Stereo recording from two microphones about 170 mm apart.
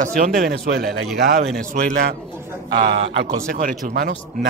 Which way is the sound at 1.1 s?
85° right.